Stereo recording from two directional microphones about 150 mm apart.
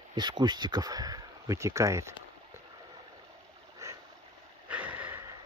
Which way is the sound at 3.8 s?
20° right (ahead or behind).